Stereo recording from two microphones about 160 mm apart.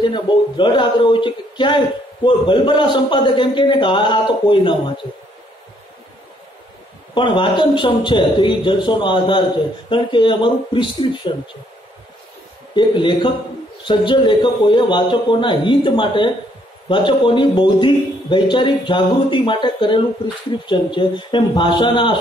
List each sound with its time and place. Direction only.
0.0 s a man's voice: 30° left (ahead or behind)
7.2 s a man's voice: 30° left (ahead or behind)
12.7 s a man's voice: 30° left (ahead or behind)